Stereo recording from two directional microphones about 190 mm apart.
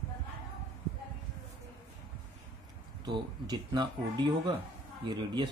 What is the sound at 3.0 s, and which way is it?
Speech, 20° right (ahead or behind).